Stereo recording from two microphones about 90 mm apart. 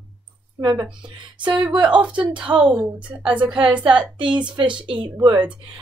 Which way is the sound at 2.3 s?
65° right (ahead or behind).